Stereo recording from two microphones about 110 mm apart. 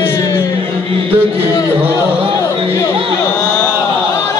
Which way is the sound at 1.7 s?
20° right (ahead or behind).